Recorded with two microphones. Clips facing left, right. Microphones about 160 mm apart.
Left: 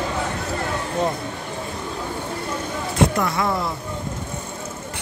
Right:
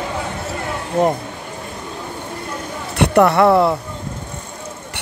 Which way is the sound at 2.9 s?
70° right (ahead or behind).